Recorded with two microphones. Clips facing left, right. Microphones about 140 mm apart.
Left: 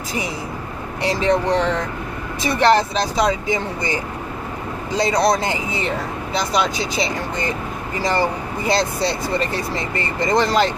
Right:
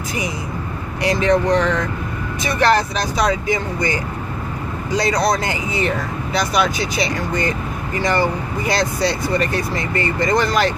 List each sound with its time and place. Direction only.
1.0 s speech: 30° left (ahead or behind)
4.9 s speech: 25° left (ahead or behind)